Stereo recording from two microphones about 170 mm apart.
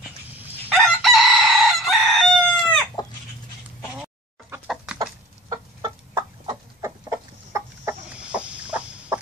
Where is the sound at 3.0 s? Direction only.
25° left (ahead or behind).